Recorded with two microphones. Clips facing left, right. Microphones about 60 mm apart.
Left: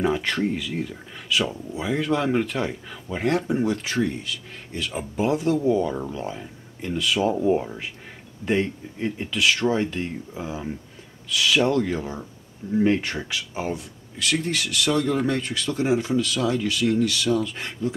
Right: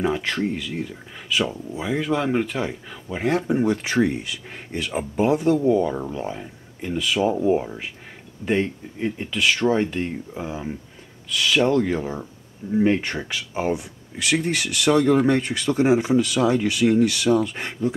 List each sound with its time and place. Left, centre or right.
0.0 s speech: centre
4.0 s speech: centre
4.8 s speech: centre
13.7 s speech: centre
15.2 s speech: right